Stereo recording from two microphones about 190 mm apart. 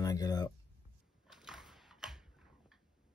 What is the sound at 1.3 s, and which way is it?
Typewriter, centre (ahead or behind).